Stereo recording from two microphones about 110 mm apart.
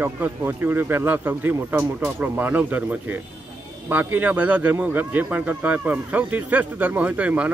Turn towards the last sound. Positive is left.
turn(degrees=-15)  # may be behind; listen again after turning